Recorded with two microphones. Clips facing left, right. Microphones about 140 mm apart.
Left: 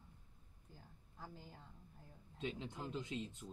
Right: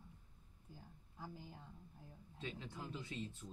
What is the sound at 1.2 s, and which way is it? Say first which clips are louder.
Speech: right 2 dB; 5° right (ahead or behind).